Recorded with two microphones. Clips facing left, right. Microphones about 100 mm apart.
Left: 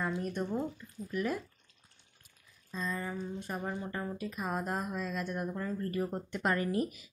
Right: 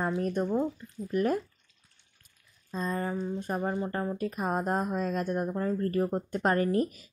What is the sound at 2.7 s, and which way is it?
Speech, 45° right (ahead or behind).